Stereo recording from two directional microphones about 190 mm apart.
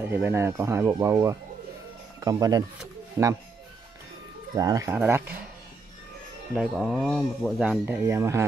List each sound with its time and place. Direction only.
0.1 s speech: 10° right (ahead or behind)
4.6 s speech: 20° right (ahead or behind)
6.5 s speech: centre (ahead or behind)